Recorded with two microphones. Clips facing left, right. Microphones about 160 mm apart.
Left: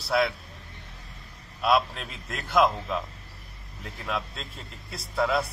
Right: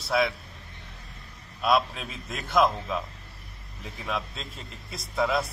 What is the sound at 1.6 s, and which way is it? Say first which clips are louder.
A man's voice: even; centre (ahead or behind).